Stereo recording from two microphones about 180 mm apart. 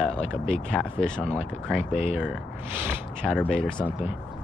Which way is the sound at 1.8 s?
35° left (ahead or behind).